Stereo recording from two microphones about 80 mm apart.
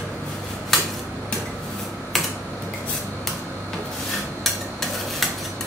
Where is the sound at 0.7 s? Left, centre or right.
Centre.